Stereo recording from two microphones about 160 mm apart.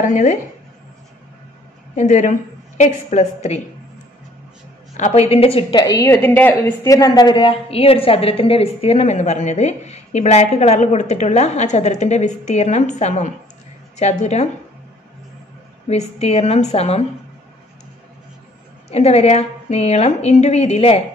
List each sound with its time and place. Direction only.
0.1 s a woman's voice: 50° left (ahead or behind)
2.0 s a woman's voice: 50° left (ahead or behind)
4.9 s a woman's voice: 45° left (ahead or behind)
15.9 s a woman's voice: 40° left (ahead or behind)
18.9 s a woman's voice: 40° left (ahead or behind)